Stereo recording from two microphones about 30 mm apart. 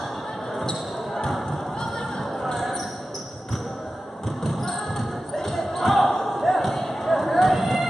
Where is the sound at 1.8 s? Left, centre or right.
Centre.